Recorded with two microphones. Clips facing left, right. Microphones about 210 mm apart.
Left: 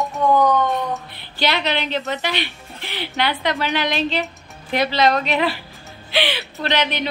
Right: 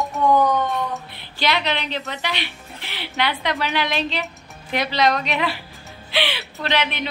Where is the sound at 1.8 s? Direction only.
Centre (ahead or behind).